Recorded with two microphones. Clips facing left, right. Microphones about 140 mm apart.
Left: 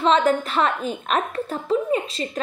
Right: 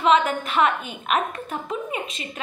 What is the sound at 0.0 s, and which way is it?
A woman's voice, 35° left (ahead or behind).